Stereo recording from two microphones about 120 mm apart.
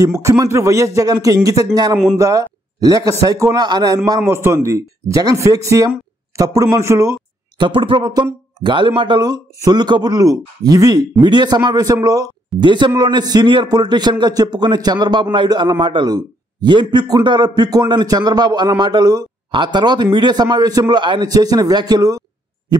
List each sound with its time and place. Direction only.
0.0 s speech: 25° right (ahead or behind)
4.2 s speech: 20° right (ahead or behind)
7.5 s speech: 45° right (ahead or behind)